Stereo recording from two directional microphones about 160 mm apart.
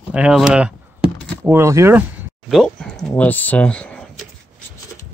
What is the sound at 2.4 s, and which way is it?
Speech, centre (ahead or behind).